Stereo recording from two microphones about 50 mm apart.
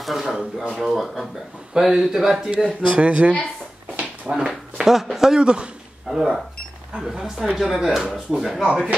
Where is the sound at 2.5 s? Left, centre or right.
Right.